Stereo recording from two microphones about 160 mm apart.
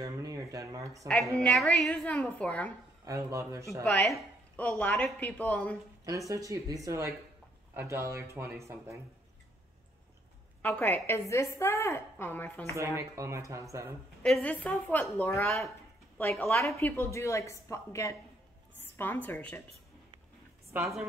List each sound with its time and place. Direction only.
0.0 s speech: 20° right (ahead or behind)
1.4 s a woman's voice: 5° left (ahead or behind)
3.1 s speech: 20° right (ahead or behind)
3.8 s a woman's voice: 5° left (ahead or behind)
6.0 s speech: 20° right (ahead or behind)
10.6 s a woman's voice: 10° left (ahead or behind)
12.7 s speech: 15° right (ahead or behind)
14.2 s a woman's voice: 5° left (ahead or behind)
20.7 s speech: 10° right (ahead or behind)